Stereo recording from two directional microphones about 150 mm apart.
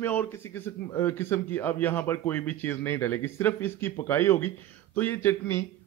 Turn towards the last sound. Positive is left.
turn(degrees=15)  # may be behind; listen again after turning